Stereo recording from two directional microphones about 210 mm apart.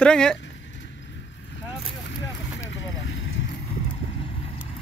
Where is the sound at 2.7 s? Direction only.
65° left (ahead or behind).